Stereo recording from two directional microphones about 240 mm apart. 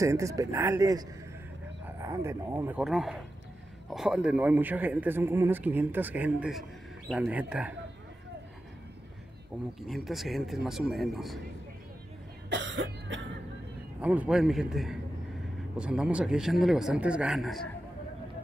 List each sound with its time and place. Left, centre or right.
0.0 s speech: centre
9.8 s speech: centre
12.4 s cough: right
14.0 s speech: centre